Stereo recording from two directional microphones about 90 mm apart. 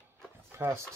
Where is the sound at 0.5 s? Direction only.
30° right (ahead or behind).